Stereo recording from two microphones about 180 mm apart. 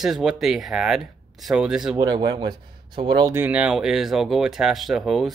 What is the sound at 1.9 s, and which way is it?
Speech, 25° right (ahead or behind).